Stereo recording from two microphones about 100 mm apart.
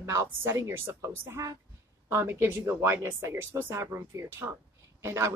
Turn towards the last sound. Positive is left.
turn(degrees=-25)  # may be behind; listen again after turning